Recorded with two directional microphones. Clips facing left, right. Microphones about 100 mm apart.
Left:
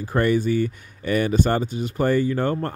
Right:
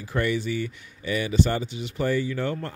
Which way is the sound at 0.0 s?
45° left (ahead or behind).